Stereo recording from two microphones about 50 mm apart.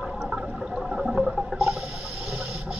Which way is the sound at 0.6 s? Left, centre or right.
Centre.